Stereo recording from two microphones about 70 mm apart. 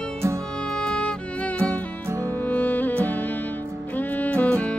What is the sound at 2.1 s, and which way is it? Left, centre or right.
Music, right.